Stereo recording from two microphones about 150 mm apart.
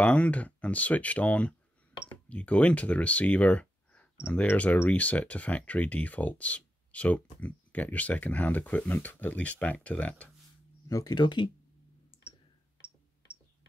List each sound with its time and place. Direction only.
0.0 s speech: 10° left (ahead or behind)
10.9 s speech: 25° left (ahead or behind)